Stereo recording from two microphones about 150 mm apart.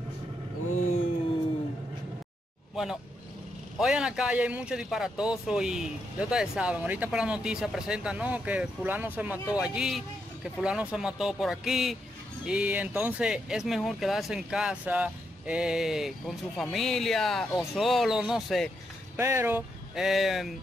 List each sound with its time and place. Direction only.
2.7 s a man's voice: 5° right (ahead or behind)
19.1 s a man's voice: 15° right (ahead or behind)
20.0 s speech: centre (ahead or behind)